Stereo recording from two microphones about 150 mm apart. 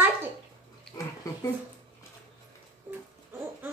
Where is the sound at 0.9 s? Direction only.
25° left (ahead or behind).